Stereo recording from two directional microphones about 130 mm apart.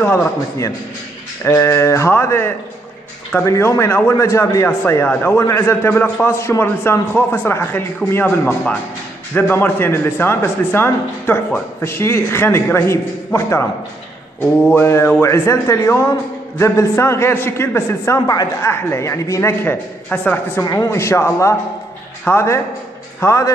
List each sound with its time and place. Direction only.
0.0 s a man's voice: 15° left (ahead or behind)
1.4 s a man's voice: 20° left (ahead or behind)
18.7 s a man's voice: 20° left (ahead or behind)
20.6 s a man's voice: 25° left (ahead or behind)